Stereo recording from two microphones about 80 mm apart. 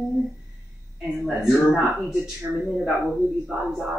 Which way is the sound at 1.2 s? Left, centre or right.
Centre.